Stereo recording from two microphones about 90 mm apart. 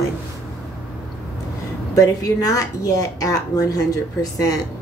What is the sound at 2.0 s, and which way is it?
Speech, 40° left (ahead or behind).